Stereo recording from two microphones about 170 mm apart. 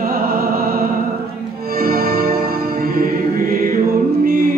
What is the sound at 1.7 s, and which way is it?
Music, 65° right (ahead or behind).